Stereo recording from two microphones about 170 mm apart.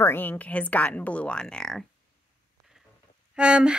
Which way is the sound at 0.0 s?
10° left (ahead or behind).